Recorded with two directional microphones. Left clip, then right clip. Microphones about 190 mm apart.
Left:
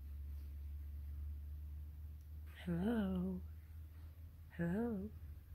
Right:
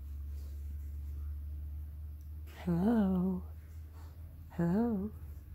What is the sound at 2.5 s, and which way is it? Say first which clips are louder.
Speech: right 8 dB; 20° right (ahead or behind).